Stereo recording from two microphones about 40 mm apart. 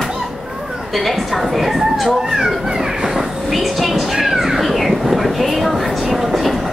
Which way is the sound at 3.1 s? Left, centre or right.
Centre.